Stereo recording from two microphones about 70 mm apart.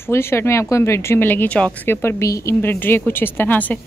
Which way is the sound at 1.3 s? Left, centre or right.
Left.